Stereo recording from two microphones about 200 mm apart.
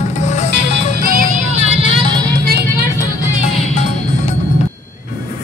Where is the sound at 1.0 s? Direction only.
45° right (ahead or behind); by 2.4 s 25° right (ahead or behind).